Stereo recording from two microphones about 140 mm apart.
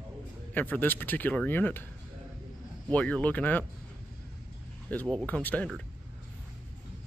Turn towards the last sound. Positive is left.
turn(degrees=5)  # may be behind; listen again after turning